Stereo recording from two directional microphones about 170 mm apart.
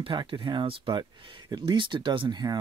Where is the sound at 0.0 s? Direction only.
30° right (ahead or behind).